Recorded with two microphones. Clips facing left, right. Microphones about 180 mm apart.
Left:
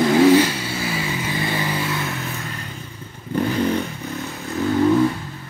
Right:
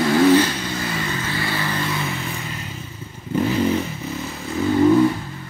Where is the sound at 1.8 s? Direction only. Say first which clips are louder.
Even; centre (ahead or behind).